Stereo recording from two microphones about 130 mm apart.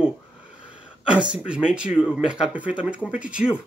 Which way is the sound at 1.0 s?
10° right (ahead or behind).